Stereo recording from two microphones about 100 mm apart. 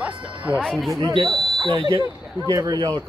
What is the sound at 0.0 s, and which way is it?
Music, 10° right (ahead or behind).